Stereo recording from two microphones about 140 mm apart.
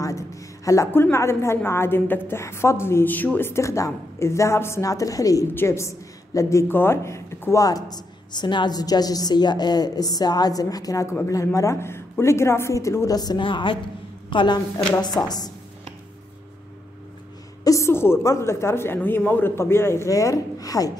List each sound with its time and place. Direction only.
0.0 s a woman's voice: 25° left (ahead or behind)
17.6 s a woman's voice: 20° left (ahead or behind)